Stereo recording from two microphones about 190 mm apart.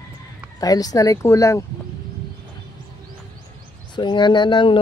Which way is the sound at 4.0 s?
25° left (ahead or behind).